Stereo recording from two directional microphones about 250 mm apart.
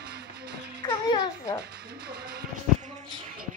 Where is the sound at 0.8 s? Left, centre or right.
Centre.